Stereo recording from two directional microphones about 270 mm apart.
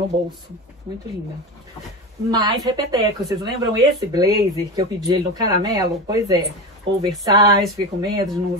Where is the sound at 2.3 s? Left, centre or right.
Centre.